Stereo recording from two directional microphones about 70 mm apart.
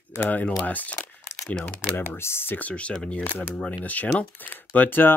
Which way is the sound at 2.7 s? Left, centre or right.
Centre.